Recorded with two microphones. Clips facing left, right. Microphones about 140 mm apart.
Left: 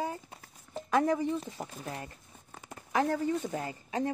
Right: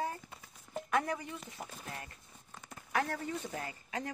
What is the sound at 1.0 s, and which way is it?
Speech, 30° left (ahead or behind).